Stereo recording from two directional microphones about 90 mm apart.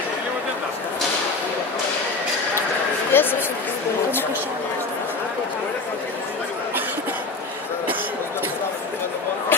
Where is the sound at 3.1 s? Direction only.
25° left (ahead or behind).